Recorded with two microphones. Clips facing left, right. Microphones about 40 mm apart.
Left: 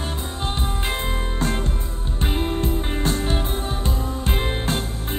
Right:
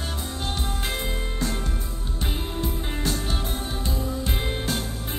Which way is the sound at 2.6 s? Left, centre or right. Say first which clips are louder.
Left 5 dB; left.